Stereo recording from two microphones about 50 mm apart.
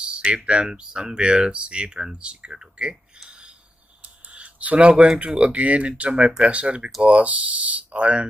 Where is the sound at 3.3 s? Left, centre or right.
Centre.